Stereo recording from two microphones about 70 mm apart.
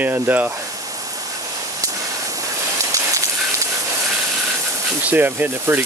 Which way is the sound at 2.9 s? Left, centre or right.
Right.